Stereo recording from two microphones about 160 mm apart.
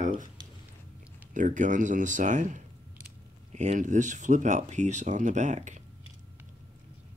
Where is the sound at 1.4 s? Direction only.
50° right (ahead or behind).